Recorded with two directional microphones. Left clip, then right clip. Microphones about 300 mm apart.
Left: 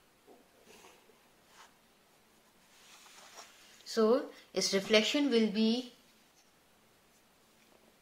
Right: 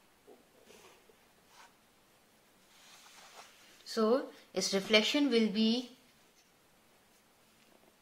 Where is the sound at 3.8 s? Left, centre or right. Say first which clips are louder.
Left 2 dB; centre.